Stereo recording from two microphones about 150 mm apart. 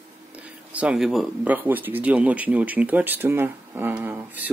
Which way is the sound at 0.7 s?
10° right (ahead or behind).